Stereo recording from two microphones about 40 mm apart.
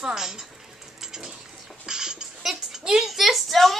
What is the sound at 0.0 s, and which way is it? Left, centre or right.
Speech, centre.